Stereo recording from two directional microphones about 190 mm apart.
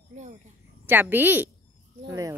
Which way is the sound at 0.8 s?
10° right (ahead or behind).